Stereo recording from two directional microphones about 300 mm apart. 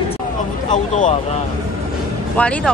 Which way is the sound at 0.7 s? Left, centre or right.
Left.